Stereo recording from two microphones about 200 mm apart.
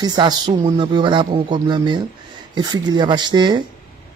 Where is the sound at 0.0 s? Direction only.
20° right (ahead or behind).